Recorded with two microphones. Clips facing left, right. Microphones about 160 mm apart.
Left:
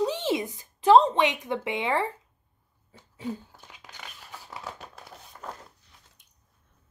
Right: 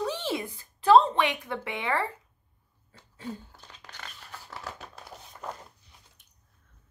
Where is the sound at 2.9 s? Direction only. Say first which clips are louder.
Left 4 dB; 15° left (ahead or behind).